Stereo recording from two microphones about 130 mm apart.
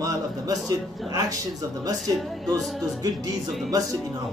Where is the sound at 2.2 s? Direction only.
Centre (ahead or behind).